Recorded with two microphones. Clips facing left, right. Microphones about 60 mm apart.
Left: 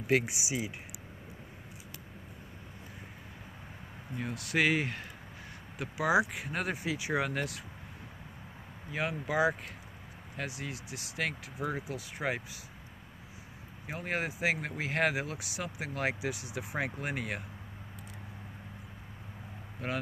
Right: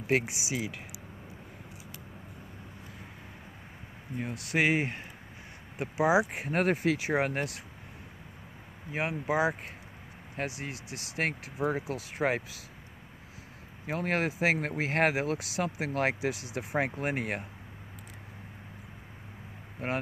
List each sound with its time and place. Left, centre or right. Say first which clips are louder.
0.0 s speech: even; right
4.3 s speech: right 1 dB; right
6.3 s speech: right 7 dB; right
7.1 s speech: right 3 dB; right
8.9 s speech: right 2 dB; right
10.3 s speech: right 3 dB; right
11.5 s speech: right 5 dB; right
11.9 s speech: right 5 dB; right
13.8 s speech: right 5 dB; right
19.8 s speech: right 3 dB; right